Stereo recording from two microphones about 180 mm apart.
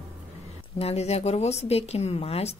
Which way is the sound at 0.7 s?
35° left (ahead or behind).